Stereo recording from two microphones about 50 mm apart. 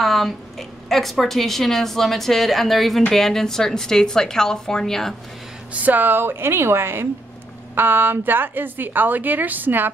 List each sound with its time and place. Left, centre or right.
0.0 s a woman's voice: centre
5.7 s a woman's voice: right
7.7 s a woman's voice: right